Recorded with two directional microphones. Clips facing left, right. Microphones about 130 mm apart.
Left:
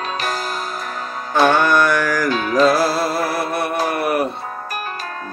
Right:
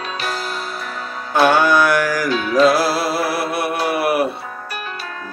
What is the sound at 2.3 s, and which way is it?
Music, 45° left (ahead or behind).